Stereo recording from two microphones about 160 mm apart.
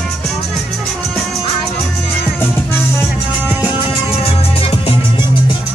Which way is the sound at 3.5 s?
10° right (ahead or behind).